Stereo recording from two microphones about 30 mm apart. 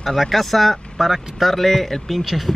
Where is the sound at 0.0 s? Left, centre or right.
Centre.